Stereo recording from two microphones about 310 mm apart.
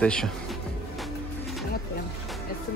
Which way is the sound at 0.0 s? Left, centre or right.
Centre.